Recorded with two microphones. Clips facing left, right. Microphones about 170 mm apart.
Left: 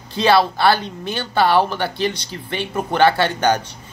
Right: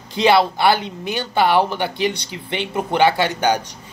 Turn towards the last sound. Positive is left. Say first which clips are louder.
# left 1 dB
turn(degrees=-15)  # may be behind; listen again after turning